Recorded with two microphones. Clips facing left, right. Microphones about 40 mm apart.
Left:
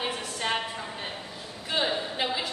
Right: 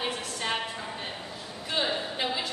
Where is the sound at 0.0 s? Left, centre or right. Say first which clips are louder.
Left 1 dB; centre.